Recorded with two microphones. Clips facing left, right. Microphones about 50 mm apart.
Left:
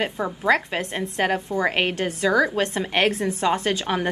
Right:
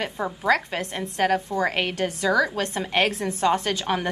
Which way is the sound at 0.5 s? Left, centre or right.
Left.